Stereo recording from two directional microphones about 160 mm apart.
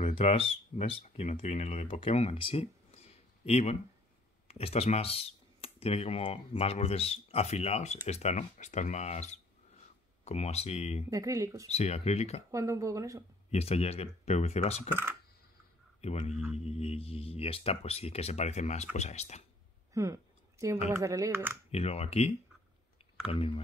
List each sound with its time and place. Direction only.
0.1 s speech: 40° left (ahead or behind)
11.1 s speech: 20° right (ahead or behind)
11.7 s speech: 40° left (ahead or behind)
12.4 s speech: 20° right (ahead or behind)
13.5 s speech: 40° left (ahead or behind)
16.0 s speech: 45° left (ahead or behind)
19.9 s a sound: 20° right (ahead or behind)
20.9 s speech: 20° right (ahead or behind)
21.6 s speech: 40° left (ahead or behind)
23.3 s speech: 35° left (ahead or behind)